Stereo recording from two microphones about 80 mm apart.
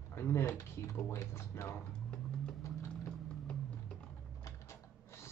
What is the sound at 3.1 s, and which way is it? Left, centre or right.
Vehicle, centre.